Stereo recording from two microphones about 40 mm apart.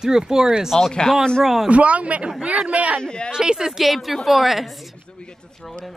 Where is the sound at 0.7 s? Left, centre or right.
Centre.